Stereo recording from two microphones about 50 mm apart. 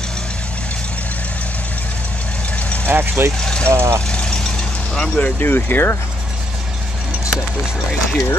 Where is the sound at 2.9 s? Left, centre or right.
Right.